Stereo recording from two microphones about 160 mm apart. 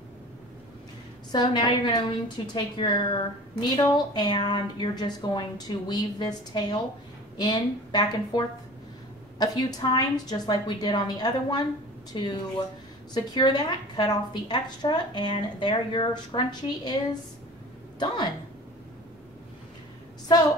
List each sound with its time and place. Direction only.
1.3 s a woman's voice: 25° left (ahead or behind)